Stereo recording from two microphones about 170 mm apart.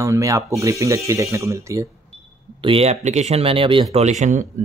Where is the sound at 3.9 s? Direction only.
40° right (ahead or behind).